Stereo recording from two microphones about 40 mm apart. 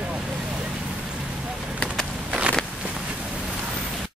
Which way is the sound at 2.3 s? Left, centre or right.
Right.